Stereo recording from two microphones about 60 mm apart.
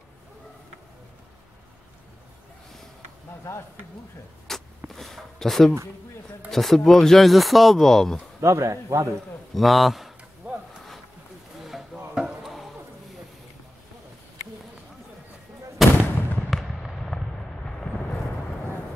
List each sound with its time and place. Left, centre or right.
3.5 s speech: left
4.5 s a sound: centre
6.5 s speech: centre
8.4 s speech: right
9.5 s a man's voice: centre
10.4 s a sound: centre
11.6 s a sound: centre
15.8 s artillery fire: centre
16.4 s fireworks: centre